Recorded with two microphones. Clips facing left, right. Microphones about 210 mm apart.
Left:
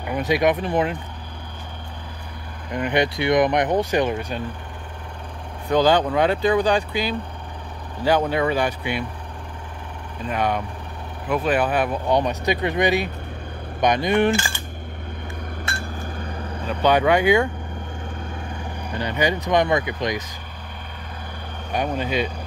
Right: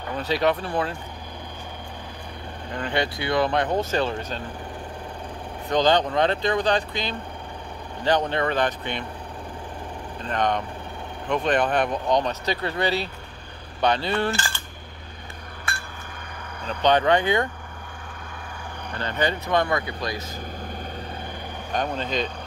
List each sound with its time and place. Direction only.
0.0 s speech: 15° left (ahead or behind)
2.7 s speech: 20° left (ahead or behind)
5.7 s speech: 10° left (ahead or behind)
10.2 s speech: 10° left (ahead or behind)
16.6 s speech: 10° left (ahead or behind)
18.9 s speech: 15° left (ahead or behind)
21.7 s speech: 10° left (ahead or behind)